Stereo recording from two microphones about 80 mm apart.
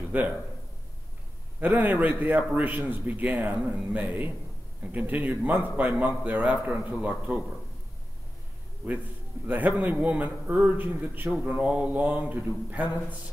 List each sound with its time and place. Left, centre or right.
0.1 s a man's voice: centre
1.6 s a man's voice: right
9.5 s a man's voice: right